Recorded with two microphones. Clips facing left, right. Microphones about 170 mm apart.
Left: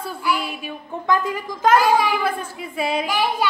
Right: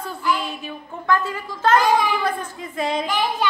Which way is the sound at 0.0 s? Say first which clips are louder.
Even; 10° left (ahead or behind).